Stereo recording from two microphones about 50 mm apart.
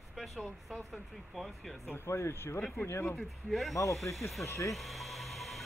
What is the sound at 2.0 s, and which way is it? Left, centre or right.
Speech, left.